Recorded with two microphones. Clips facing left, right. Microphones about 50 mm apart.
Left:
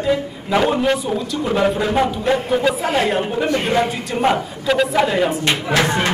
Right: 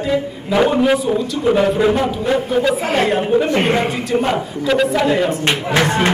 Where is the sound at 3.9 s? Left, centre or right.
Centre.